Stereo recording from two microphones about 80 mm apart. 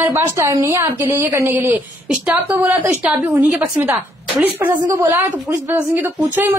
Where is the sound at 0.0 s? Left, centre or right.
Right.